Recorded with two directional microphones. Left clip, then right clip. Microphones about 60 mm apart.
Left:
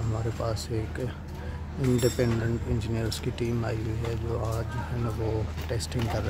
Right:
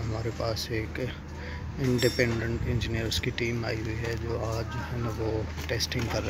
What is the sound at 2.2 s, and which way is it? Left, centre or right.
Speech, left.